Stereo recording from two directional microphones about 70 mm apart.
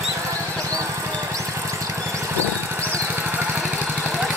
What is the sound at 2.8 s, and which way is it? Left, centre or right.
Vehicle, right.